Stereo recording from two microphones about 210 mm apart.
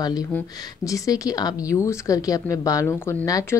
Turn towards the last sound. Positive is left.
turn(degrees=15)  # may be behind; listen again after turning